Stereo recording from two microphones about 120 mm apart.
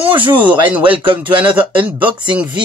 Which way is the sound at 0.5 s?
10° right (ahead or behind).